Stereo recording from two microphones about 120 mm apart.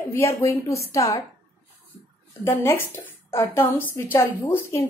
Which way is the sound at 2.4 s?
20° left (ahead or behind).